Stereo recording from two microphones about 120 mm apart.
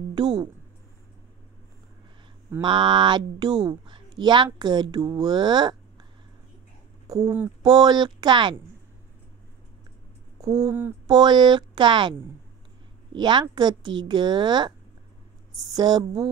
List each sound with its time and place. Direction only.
0.1 s a sound: 35° right (ahead or behind)
2.6 s speech: 40° right (ahead or behind)
7.1 s speech: 30° right (ahead or behind)
10.4 s speech: 30° right (ahead or behind)